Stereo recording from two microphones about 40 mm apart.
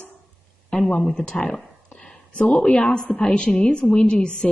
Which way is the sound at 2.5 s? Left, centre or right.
Left.